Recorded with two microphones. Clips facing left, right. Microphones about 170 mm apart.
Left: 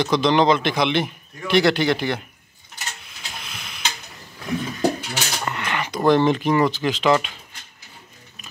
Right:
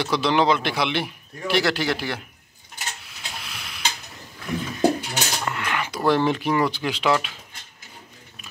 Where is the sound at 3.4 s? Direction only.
Centre (ahead or behind).